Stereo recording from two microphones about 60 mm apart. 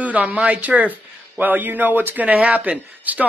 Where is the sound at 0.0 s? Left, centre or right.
Right.